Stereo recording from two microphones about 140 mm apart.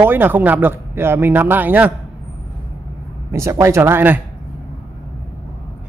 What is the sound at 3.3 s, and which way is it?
Speech, 20° right (ahead or behind).